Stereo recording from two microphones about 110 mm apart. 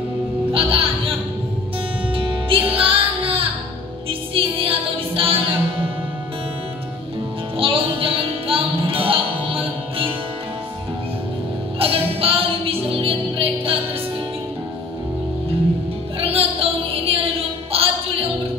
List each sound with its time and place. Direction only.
0.5 s music: 55° right (ahead or behind)
2.1 s music: 55° right (ahead or behind)
7.5 s music: 55° right (ahead or behind)
11.8 s music: 60° right (ahead or behind)
16.2 s a sound: 60° right (ahead or behind)